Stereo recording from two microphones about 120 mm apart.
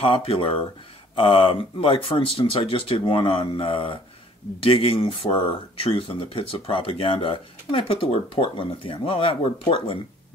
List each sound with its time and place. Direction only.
0.0 s speech: 50° left (ahead or behind)